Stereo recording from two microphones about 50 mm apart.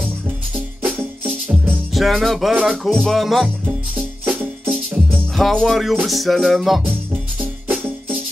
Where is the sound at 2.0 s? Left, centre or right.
Centre.